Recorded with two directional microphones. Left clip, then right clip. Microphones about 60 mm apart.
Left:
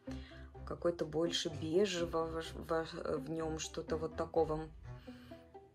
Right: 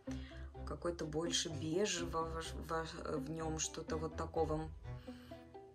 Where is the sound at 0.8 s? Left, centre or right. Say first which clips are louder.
Left 5 dB; centre.